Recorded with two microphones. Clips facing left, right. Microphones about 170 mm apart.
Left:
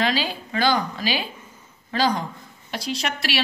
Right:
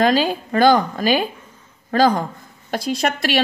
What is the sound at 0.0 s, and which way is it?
A woman's voice, 45° right (ahead or behind).